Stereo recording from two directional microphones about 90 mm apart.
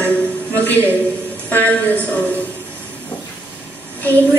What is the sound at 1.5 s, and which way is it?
Music, 20° left (ahead or behind).